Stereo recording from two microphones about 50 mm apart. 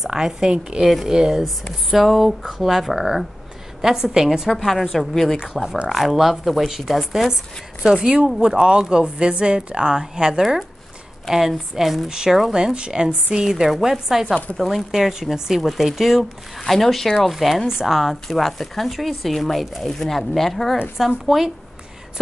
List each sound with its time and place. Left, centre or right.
0.0 s speech: centre
0.8 s a woman's voice: centre
14.2 s speech: left
14.6 s a woman's voice: centre
14.9 s a woman's voice: centre
21.3 s a woman's voice: centre